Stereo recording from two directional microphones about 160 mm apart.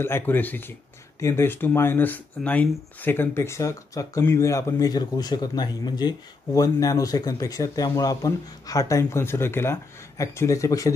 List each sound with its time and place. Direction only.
0.0 s speech: 15° left (ahead or behind)